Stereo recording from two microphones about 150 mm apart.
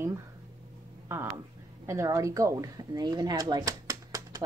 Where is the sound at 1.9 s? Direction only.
20° right (ahead or behind).